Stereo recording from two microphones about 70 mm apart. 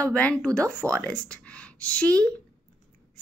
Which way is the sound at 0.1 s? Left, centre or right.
Centre.